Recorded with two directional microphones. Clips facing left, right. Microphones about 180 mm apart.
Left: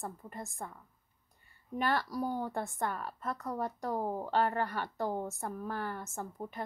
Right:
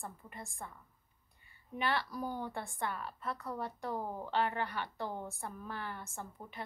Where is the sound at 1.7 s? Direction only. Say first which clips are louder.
Left 3 dB; 45° left (ahead or behind).